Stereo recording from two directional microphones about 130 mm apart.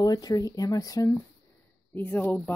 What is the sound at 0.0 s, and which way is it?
Speech, 30° left (ahead or behind).